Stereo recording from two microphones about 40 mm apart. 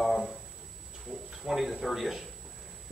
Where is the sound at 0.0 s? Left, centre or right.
Centre.